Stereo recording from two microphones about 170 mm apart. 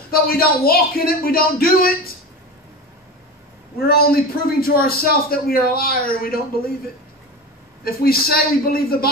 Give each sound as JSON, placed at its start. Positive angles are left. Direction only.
{"t": 0.1, "sound": "a man's voice", "side_deg": 60}
{"t": 3.8, "sound": "a man's voice", "side_deg": 65}
{"t": 7.8, "sound": "a man's voice", "side_deg": 65}